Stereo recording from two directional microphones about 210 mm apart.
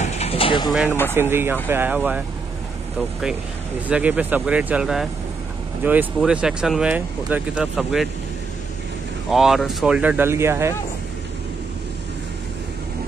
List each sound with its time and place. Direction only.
0.0 s mechanisms: 30° left (ahead or behind)
1.1 s speech: 10° right (ahead or behind)
3.9 s speech: 5° right (ahead or behind)
9.3 s speech: centre (ahead or behind)